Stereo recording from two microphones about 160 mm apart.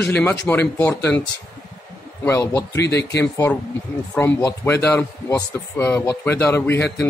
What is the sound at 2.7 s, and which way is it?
Speech, 90° left.